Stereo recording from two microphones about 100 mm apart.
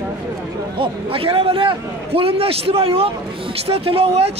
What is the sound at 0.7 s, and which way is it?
A man's voice, 65° right (ahead or behind).